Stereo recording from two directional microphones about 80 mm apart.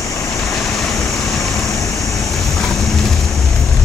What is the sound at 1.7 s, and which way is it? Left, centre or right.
Vehicle, left.